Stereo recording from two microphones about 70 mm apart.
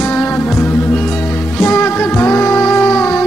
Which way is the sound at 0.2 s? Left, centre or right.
Left.